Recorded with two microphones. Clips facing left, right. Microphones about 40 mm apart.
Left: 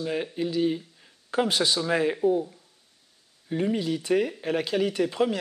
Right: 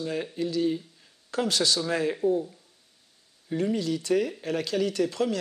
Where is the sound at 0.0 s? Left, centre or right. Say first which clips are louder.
Left 1 dB; centre.